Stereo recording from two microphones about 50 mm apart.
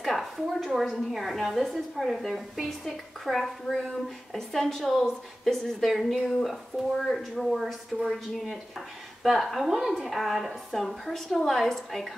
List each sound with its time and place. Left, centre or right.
0.0 s a sound: centre
0.9 s a woman's voice: centre
9.2 s a woman's voice: centre